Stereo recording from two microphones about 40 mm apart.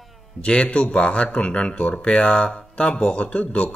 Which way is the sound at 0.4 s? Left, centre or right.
Left.